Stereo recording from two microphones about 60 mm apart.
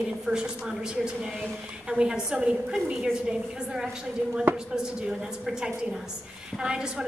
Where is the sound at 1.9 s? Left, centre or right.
Centre.